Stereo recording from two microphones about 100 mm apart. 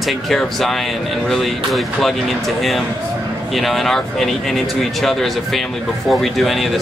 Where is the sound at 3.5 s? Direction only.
Centre (ahead or behind).